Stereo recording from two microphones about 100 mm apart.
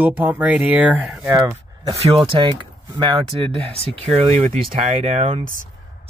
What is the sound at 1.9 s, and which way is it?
Speech, 80° right.